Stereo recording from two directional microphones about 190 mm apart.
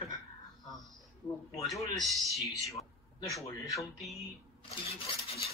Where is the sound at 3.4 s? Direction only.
20° left (ahead or behind).